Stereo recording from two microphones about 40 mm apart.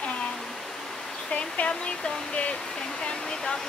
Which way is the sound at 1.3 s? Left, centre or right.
Left.